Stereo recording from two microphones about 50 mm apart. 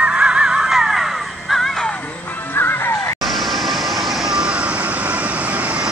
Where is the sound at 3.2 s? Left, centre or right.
Centre; by 5.8 s right.